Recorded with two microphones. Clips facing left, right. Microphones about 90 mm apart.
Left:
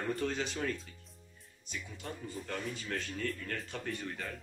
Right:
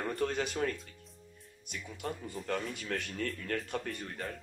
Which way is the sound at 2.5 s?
65° right (ahead or behind).